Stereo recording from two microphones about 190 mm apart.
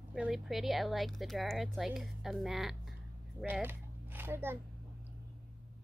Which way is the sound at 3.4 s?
10° right (ahead or behind).